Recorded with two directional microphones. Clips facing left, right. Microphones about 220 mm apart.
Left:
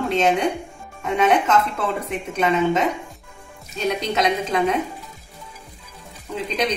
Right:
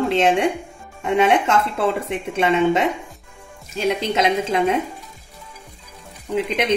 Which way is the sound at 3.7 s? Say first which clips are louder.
Right 2 dB; 25° right (ahead or behind).